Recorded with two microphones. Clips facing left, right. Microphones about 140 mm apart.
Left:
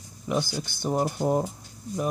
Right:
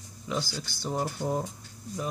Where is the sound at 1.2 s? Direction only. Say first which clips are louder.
Left 6 dB; 90° left.